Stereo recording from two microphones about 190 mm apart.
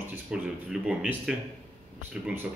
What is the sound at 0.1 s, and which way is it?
Speech, 5° right (ahead or behind).